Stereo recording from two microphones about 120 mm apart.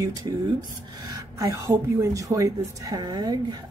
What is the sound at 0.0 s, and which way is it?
A woman's voice, 35° right (ahead or behind).